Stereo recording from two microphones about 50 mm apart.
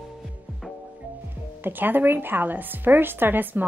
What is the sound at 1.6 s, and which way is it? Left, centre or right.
A woman's voice, right.